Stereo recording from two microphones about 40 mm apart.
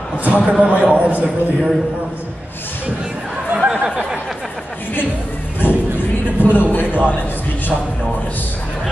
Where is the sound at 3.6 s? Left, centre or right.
Right.